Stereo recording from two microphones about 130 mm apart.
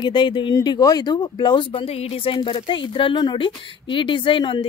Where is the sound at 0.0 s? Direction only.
35° left (ahead or behind).